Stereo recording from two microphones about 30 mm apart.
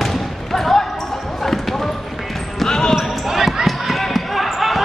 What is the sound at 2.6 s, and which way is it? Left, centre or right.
Basketball bounce, centre.